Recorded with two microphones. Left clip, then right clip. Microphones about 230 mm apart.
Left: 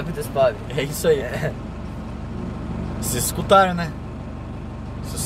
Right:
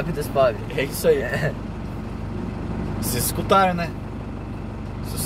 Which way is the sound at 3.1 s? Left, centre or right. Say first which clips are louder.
Left 3 dB; left.